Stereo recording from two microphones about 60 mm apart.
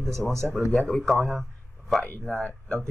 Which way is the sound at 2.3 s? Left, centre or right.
Centre.